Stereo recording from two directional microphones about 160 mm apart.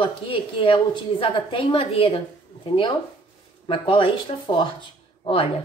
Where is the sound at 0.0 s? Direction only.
30° left (ahead or behind).